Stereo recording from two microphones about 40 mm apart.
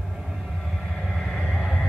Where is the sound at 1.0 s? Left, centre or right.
Centre.